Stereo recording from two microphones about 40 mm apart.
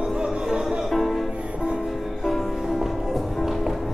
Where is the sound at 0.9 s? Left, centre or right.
Centre.